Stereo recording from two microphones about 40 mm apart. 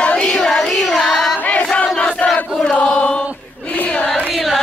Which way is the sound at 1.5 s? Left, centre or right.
Left.